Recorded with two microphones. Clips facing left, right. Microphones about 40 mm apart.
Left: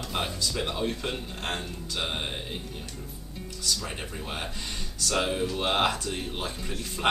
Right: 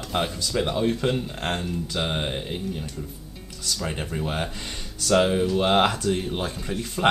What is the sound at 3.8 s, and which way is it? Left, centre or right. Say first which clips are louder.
Speech: right 7 dB; centre.